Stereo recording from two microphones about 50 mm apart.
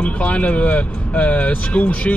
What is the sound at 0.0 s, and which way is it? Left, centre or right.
Speech, left.